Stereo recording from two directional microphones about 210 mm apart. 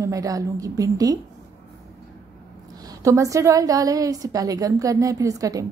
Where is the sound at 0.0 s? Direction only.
15° right (ahead or behind).